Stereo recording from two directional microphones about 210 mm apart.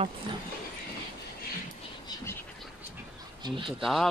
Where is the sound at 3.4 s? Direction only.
25° right (ahead or behind).